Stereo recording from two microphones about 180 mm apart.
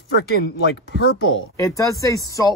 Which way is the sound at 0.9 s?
85° left.